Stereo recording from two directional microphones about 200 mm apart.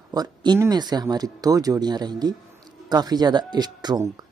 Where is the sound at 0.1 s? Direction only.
20° right (ahead or behind).